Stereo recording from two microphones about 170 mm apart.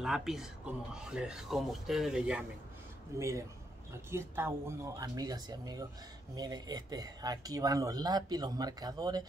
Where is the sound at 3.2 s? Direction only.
20° right (ahead or behind).